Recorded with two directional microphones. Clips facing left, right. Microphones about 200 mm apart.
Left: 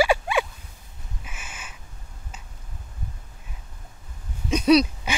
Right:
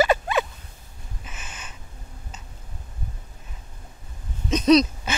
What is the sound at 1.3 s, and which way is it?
Snort, 10° left (ahead or behind).